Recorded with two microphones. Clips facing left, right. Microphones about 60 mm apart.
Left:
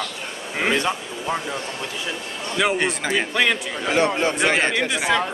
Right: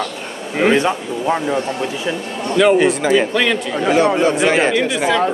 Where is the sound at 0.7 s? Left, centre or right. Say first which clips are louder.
Right 5 dB; right.